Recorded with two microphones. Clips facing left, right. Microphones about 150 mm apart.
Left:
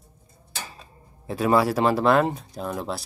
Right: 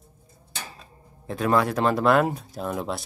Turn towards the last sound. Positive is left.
turn(degrees=0)  # may be behind; listen again after turning